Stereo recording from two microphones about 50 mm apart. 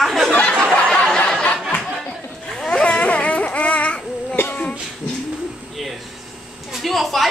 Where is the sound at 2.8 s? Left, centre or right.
Left.